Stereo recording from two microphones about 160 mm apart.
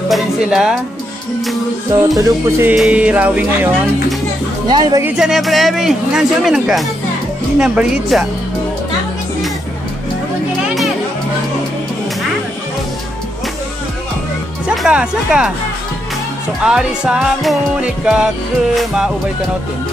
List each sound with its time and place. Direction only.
0.1 s music: centre (ahead or behind)
2.1 s music: 20° right (ahead or behind)
2.7 s music: 5° right (ahead or behind)
4.6 s music: 25° right (ahead or behind)
5.0 s a man's voice: 5° right (ahead or behind)
14.7 s speech: 5° right (ahead or behind)
16.6 s a man's voice: 5° right (ahead or behind)